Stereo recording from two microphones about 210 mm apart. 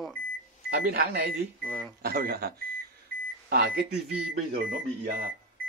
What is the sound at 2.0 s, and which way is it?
A man's voice, 45° right (ahead or behind).